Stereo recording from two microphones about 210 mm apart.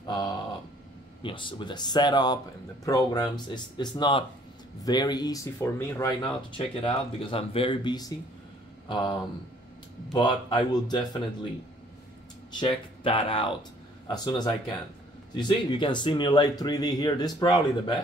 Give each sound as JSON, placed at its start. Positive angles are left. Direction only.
{"t": 0.0, "sound": "a sound", "side_deg": 20}
{"t": 1.2, "sound": "speech", "side_deg": 20}
{"t": 10.1, "sound": "speech", "side_deg": 20}
{"t": 12.4, "sound": "speech", "side_deg": 25}